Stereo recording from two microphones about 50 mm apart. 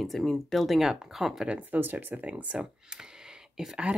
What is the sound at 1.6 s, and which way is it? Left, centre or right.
Speech, right.